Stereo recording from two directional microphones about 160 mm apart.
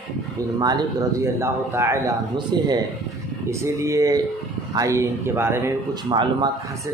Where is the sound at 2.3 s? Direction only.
25° right (ahead or behind).